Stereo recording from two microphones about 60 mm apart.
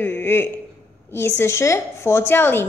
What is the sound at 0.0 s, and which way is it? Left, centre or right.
A woman's voice, left.